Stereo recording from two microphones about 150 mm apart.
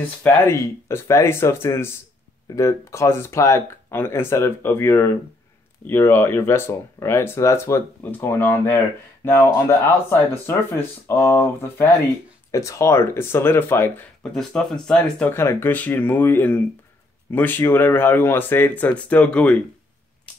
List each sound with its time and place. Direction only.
0.2 s speech: 20° left (ahead or behind)
14.3 s speech: 5° left (ahead or behind)